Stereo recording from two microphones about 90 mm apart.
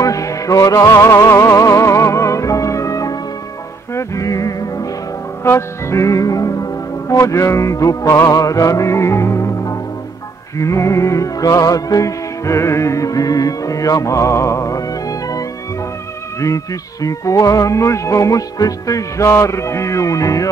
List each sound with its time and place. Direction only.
0.0 s music: 40° left (ahead or behind)
5.4 s music: 30° left (ahead or behind)